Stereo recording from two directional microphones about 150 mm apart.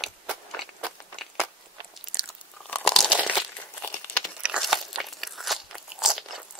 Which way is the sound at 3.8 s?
15° left (ahead or behind).